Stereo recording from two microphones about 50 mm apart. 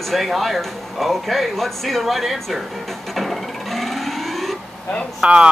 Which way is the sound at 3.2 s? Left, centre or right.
Centre.